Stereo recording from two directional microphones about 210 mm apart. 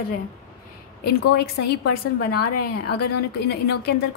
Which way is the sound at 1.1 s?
50° left (ahead or behind).